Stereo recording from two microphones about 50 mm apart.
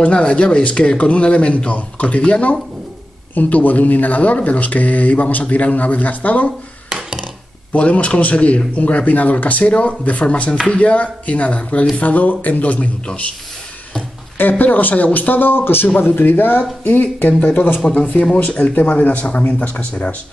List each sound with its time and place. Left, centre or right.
0.0 s speech: left
7.7 s speech: left
14.6 s speech: left